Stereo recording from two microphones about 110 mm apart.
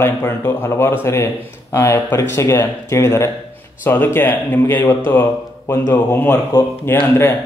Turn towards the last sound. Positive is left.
turn(degrees=20)  # may be behind; listen again after turning